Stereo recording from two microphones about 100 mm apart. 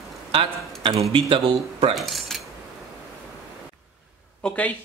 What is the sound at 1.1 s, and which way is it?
Speech, 55° right (ahead or behind).